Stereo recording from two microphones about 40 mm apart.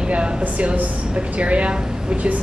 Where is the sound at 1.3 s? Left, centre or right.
Right.